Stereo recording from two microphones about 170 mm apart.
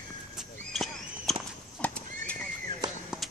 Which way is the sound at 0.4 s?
Centre (ahead or behind).